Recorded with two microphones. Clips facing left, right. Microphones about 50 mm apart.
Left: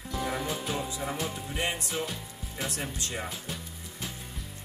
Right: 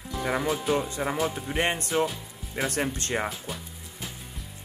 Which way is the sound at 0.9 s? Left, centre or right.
Right.